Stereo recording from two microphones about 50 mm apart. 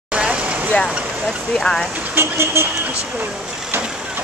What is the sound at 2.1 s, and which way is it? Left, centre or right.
Speech, right.